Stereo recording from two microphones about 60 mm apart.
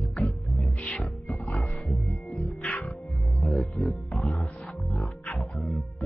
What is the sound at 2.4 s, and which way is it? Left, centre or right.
Music, left.